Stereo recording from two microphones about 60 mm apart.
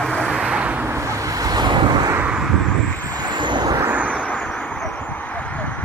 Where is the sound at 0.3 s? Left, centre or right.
Centre.